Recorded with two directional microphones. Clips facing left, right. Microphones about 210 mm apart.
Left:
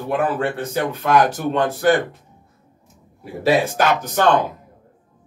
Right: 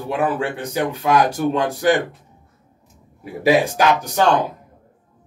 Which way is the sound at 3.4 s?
10° right (ahead or behind).